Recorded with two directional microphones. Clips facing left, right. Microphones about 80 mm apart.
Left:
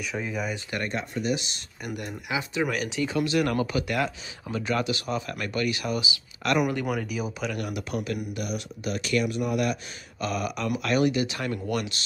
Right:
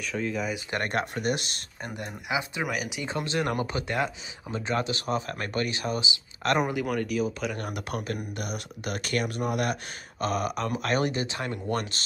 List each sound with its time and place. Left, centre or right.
0.0 s speech: centre
0.7 s speech: right
1.9 s speech: right
2.6 s speech: centre
3.0 s speech: right
6.9 s speech: centre
7.5 s a man's voice: right
11.7 s a man's voice: right